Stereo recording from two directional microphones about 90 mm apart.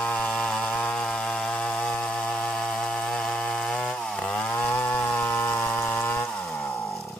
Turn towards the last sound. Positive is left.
turn(degrees=25)  # may be behind; listen again after turning